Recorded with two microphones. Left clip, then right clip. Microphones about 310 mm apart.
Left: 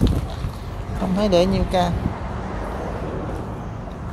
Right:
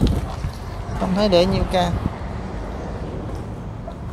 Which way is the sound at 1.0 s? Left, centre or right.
Centre.